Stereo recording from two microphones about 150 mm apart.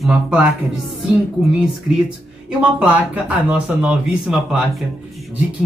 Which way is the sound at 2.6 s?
10° right (ahead or behind).